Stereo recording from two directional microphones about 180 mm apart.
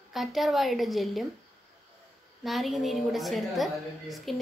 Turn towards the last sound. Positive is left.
turn(degrees=0)  # may be behind; listen again after turning